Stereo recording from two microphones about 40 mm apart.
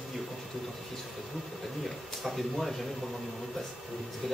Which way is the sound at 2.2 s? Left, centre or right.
Centre.